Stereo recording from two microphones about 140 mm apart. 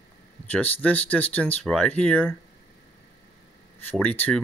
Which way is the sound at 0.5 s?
10° left (ahead or behind).